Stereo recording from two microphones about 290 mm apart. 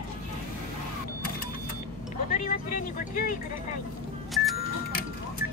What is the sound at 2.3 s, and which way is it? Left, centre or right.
Speech, left.